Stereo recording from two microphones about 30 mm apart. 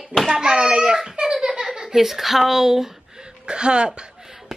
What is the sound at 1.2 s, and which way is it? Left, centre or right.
Speech, right.